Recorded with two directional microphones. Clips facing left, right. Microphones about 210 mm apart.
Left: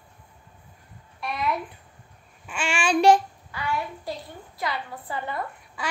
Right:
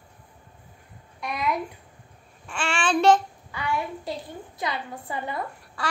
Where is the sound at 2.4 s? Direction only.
5° left (ahead or behind).